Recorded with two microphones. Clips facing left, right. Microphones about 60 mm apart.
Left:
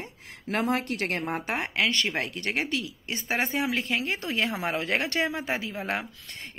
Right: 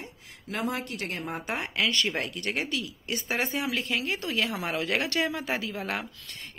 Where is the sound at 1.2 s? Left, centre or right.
Left.